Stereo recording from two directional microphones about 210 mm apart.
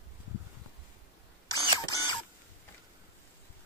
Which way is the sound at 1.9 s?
20° left (ahead or behind).